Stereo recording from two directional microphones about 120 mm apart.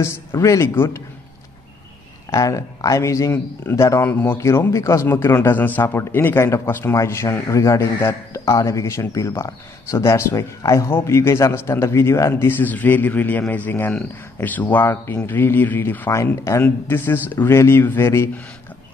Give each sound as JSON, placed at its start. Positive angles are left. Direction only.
{"t": 0.0, "sound": "speech", "side_deg": 20}
{"t": 2.3, "sound": "speech", "side_deg": 30}